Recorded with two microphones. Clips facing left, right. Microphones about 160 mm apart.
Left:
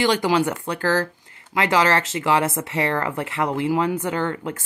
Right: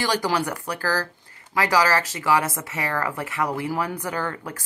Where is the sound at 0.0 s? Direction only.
20° left (ahead or behind).